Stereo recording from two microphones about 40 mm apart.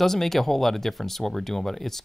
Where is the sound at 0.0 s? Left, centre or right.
Centre.